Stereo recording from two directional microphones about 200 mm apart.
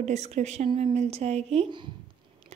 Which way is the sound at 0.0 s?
35° right (ahead or behind).